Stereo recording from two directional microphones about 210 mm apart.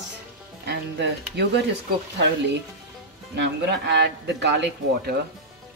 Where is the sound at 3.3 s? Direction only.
55° right (ahead or behind).